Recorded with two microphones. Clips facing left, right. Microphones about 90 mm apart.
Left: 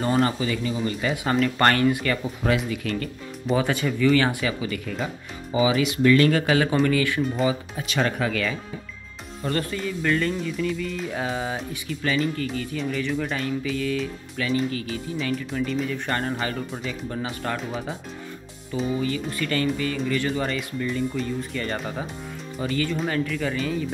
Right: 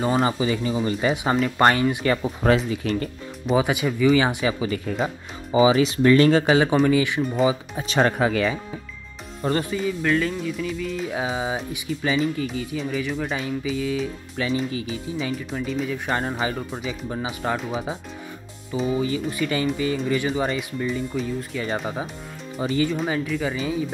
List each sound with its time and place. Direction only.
0.0 s speech: 10° right (ahead or behind)
0.5 s speech: 25° right (ahead or behind)
1.3 s speech: 10° right (ahead or behind)
2.7 s speech: 25° right (ahead or behind)
3.4 s speech: 15° right (ahead or behind)
9.5 s speech: 10° right (ahead or behind)
14.4 s speech: 25° right (ahead or behind); by 17.9 s 10° right (ahead or behind)
18.9 s speech: 20° right (ahead or behind)
22.6 s speech: 20° right (ahead or behind)
22.8 s speech: 10° right (ahead or behind)